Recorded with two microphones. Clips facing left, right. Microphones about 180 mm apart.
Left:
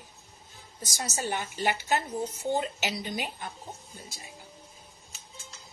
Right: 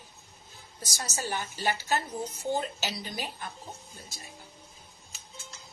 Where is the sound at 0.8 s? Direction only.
20° left (ahead or behind).